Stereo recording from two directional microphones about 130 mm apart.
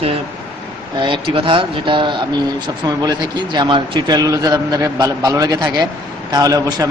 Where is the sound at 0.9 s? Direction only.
40° right (ahead or behind).